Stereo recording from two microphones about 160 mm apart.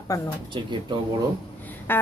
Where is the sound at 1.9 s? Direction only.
15° left (ahead or behind).